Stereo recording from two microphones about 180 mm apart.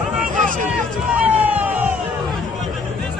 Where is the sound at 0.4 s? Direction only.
45° right (ahead or behind).